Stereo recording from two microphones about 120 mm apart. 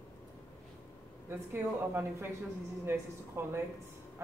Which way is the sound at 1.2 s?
20° right (ahead or behind).